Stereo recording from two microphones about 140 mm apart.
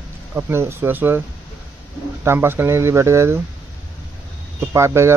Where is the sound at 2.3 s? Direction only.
15° right (ahead or behind).